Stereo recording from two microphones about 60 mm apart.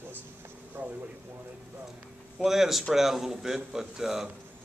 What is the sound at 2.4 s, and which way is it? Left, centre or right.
A man's voice, centre.